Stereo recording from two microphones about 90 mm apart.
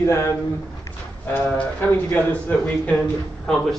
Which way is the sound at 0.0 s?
30° left (ahead or behind).